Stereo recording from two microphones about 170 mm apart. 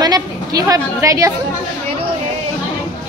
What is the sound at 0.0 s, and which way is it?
A woman's voice, 20° right (ahead or behind).